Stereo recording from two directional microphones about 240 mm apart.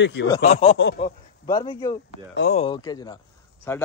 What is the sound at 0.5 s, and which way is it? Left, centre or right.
Speech, left.